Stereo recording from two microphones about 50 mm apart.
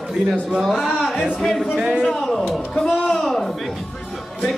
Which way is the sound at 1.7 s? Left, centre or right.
Right.